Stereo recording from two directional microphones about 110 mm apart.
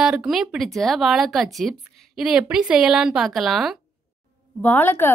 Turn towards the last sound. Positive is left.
turn(degrees=20)  # may be behind; listen again after turning